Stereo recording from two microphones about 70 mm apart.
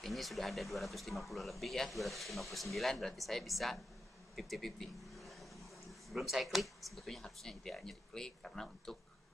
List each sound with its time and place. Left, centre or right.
0.0 s speech: centre